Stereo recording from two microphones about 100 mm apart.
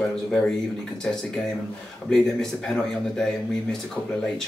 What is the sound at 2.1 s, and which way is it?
Speech, 5° left (ahead or behind).